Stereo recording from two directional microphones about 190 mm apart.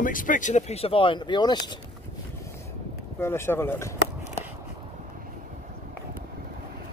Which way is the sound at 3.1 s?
10° left (ahead or behind).